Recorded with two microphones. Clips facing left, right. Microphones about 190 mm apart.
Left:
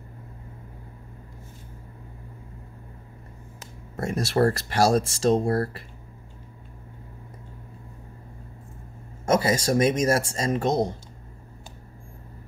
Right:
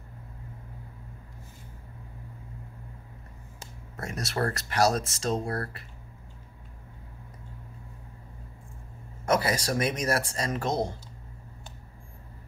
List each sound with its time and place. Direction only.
3.9 s speech: 35° left (ahead or behind)
9.2 s speech: 25° left (ahead or behind)